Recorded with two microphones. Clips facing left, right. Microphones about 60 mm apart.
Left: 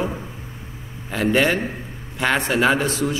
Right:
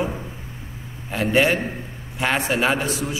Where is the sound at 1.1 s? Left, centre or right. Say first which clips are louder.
Even; centre.